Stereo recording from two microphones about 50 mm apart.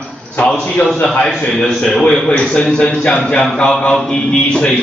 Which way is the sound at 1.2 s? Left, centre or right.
Centre.